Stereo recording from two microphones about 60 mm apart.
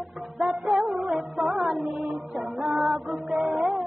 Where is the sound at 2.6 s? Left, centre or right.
Centre.